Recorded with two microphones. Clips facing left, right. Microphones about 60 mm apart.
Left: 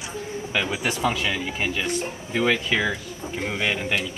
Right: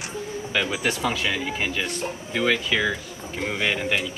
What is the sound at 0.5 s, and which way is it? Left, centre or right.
Speech, centre.